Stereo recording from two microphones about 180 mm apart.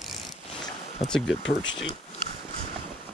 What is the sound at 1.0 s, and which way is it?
Speech, centre (ahead or behind).